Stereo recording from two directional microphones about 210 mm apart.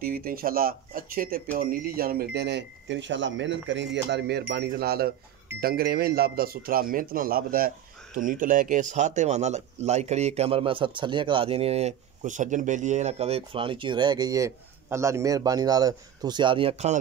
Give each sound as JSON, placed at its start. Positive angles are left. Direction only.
{"t": 0.0, "sound": "speech", "side_deg": -45}